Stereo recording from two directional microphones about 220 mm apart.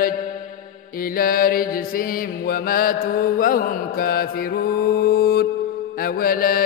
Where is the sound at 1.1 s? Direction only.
40° left (ahead or behind).